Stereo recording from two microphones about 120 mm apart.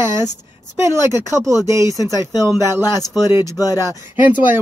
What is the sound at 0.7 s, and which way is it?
Speech, 25° right (ahead or behind).